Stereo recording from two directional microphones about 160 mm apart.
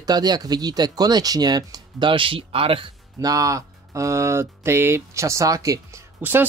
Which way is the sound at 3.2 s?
20° right (ahead or behind).